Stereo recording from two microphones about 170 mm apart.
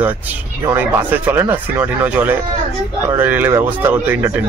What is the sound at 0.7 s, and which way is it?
Speech, 10° right (ahead or behind).